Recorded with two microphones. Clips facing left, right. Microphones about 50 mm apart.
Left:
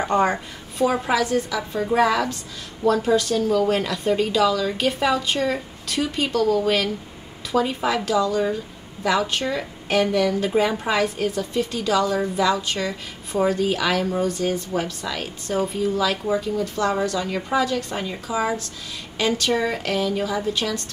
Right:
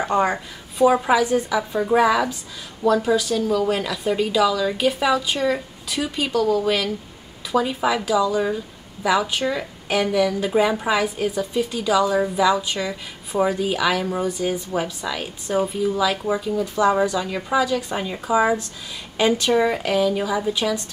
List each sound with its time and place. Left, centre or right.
0.0 s a woman's voice: centre
17.3 s a woman's voice: centre
17.7 s a woman's voice: centre
18.2 s a woman's voice: right